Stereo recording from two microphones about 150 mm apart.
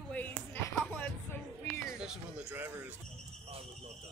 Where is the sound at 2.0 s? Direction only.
5° right (ahead or behind).